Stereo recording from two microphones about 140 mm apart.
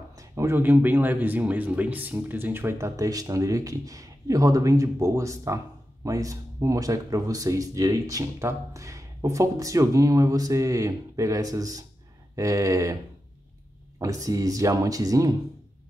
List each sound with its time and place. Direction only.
0.1 s speech: 20° right (ahead or behind)
13.9 s speech: 25° right (ahead or behind)